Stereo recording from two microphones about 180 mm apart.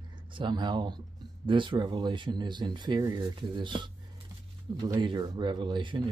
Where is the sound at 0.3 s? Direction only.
25° right (ahead or behind).